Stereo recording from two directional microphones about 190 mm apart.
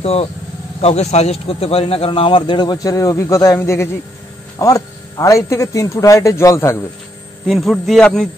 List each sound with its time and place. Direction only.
0.0 s speech: 30° left (ahead or behind); by 6.9 s 15° left (ahead or behind)
7.4 s a man's voice: centre (ahead or behind)